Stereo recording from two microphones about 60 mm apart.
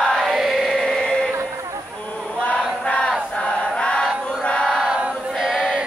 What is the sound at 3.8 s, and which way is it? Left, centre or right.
Chant, centre.